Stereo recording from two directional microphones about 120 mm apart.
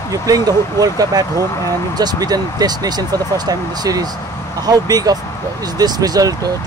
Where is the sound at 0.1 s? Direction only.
30° right (ahead or behind).